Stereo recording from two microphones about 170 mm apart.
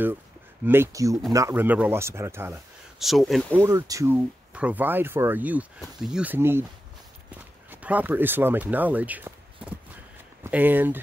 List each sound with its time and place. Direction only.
0.7 s speech: 15° right (ahead or behind)
3.0 s speech: centre (ahead or behind)
3.5 s speech: 15° right (ahead or behind)
7.7 s speech: 10° right (ahead or behind)